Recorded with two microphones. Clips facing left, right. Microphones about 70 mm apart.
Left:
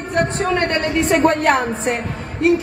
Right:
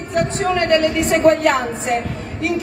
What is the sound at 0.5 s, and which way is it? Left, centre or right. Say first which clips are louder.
Speech: right 5 dB; left.